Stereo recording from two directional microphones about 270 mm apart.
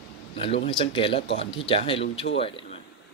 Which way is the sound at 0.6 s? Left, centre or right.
Centre.